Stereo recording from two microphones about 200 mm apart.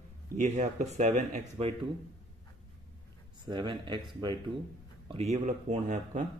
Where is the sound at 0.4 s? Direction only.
35° right (ahead or behind).